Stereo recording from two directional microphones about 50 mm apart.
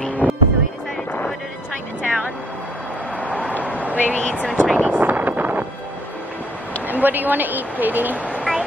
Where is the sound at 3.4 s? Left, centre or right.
Left.